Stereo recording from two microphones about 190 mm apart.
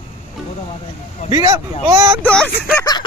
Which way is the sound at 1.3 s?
20° right (ahead or behind).